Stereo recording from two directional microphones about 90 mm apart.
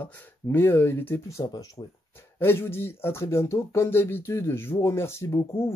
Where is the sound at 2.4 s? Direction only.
25° left (ahead or behind).